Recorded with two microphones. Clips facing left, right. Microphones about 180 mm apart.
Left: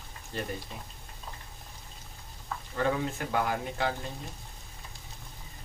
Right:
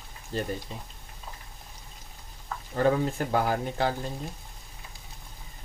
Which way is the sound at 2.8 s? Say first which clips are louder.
Right 6 dB; 35° right (ahead or behind).